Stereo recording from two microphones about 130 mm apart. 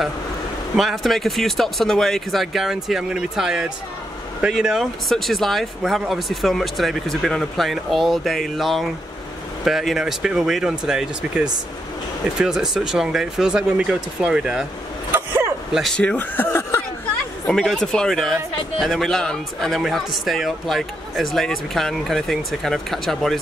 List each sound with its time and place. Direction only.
0.7 s speech: centre (ahead or behind)
15.1 s vehicle: 20° right (ahead or behind)
15.7 s speech: centre (ahead or behind); by 16.8 s 20° left (ahead or behind)
17.5 s speech: 5° left (ahead or behind)